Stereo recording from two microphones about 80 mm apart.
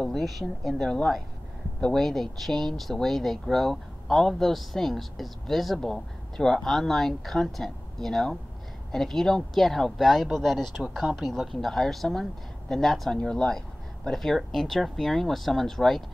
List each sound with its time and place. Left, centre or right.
0.0 s speech: centre